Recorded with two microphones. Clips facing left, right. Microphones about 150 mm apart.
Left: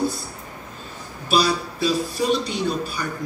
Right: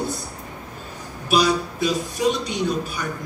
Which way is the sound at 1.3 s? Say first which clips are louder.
Right 1 dB; 15° right (ahead or behind).